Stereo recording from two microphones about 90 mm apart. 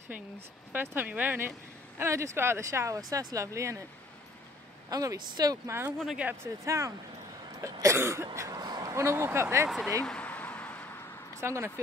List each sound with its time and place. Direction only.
0.7 s speech: 20° right (ahead or behind)
2.0 s speech: 30° right (ahead or behind)
4.8 s a woman's voice: 40° right (ahead or behind)
5.7 s speech: 25° right (ahead or behind)
6.4 s speech: 35° right (ahead or behind)
8.4 s speech: 40° right (ahead or behind)
10.0 s a sound: 15° left (ahead or behind)
11.4 s speech: 30° right (ahead or behind)